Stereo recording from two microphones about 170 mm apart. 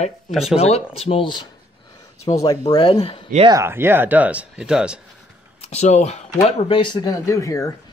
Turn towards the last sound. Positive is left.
turn(degrees=20)  # may be behind; listen again after turning